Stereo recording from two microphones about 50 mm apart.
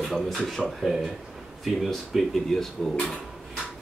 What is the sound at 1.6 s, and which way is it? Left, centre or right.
Speech, centre.